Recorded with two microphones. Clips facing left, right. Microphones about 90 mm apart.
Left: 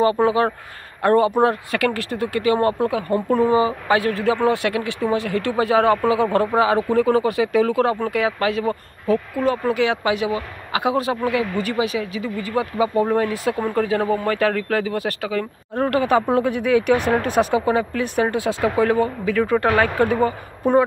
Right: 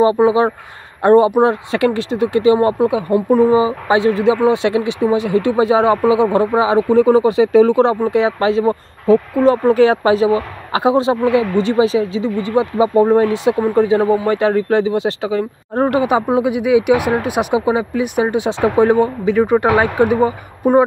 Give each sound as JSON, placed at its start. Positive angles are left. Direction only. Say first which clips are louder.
{"t": 0.0, "sound": "speech", "louder": "right 5 dB", "side_deg": -20}